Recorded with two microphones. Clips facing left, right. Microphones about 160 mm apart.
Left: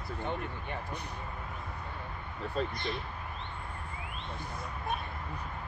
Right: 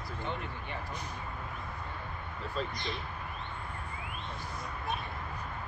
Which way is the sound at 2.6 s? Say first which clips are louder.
Left 3 dB; 55° left (ahead or behind).